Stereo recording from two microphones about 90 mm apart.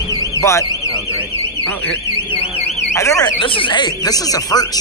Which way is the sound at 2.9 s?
35° left (ahead or behind).